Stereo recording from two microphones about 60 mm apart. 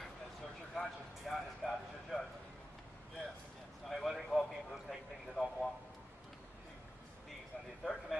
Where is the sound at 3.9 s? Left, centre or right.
Centre.